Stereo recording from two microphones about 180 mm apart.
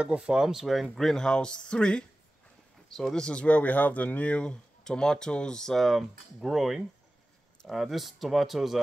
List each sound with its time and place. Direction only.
0.0 s speech: 5° right (ahead or behind)